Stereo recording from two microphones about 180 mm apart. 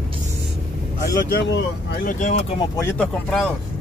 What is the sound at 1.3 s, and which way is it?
Speech, 75° left (ahead or behind).